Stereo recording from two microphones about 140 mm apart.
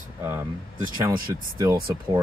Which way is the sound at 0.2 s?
15° right (ahead or behind).